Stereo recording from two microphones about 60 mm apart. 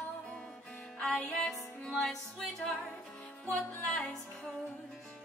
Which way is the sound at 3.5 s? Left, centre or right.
Centre.